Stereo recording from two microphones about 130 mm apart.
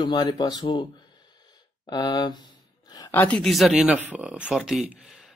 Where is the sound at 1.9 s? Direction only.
35° left (ahead or behind).